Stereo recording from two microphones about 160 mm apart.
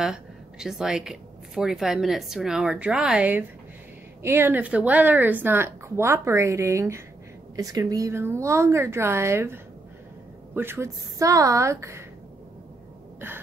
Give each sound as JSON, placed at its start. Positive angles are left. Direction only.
{"t": 0.0, "sound": "a woman's voice", "side_deg": -5}